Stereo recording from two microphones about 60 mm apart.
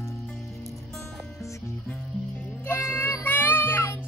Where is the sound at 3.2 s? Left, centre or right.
Left.